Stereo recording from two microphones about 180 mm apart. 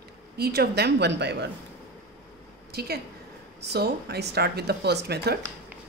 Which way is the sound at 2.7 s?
60° right (ahead or behind).